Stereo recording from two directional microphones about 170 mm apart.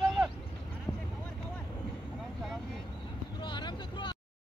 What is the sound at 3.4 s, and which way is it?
Vehicle, 25° left (ahead or behind).